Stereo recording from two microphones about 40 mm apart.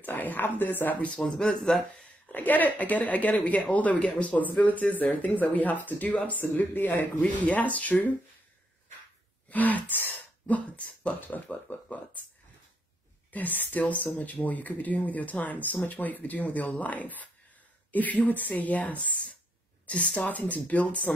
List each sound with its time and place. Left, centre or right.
0.0 s speech: left
1.1 s speech: left
2.3 s speech: left
6.5 s speech: left
7.2 s speech: left
9.5 s speech: left
13.3 s speech: left
20.2 s speech: left